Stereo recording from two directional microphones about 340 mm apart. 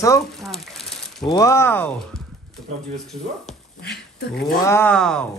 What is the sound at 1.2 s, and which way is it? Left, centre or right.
Speech, centre.